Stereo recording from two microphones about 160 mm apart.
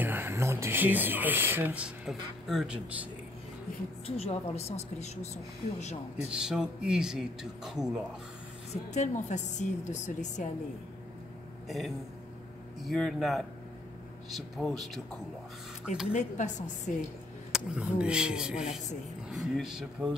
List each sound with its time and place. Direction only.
0.0 s speech: 15° right (ahead or behind)
4.2 s a woman's voice: 40° left (ahead or behind)
6.2 s speech: 5° right (ahead or behind)
8.9 s a woman's voice: 50° left (ahead or behind)
11.6 s a man's voice: centre (ahead or behind)
16.1 s a woman's voice: 50° left (ahead or behind)
17.5 s speech: 5° right (ahead or behind)